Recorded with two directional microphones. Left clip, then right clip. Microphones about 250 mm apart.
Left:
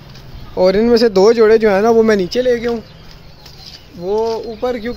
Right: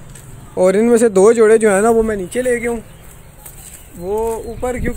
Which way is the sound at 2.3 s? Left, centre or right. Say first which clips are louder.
Left 2 dB; centre.